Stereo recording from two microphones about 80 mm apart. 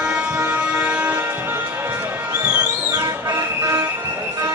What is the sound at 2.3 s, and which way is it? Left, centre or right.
Music, right.